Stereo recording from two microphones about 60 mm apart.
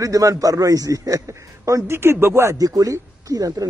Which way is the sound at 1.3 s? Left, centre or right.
Right.